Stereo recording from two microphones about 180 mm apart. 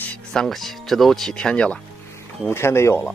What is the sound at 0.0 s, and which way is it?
Speech, 5° left (ahead or behind).